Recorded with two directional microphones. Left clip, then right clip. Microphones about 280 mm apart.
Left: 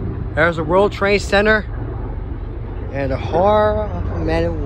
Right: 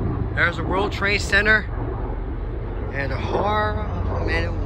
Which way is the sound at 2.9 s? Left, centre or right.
Centre.